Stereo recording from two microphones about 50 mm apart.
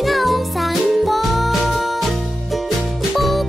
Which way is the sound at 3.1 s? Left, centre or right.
Centre.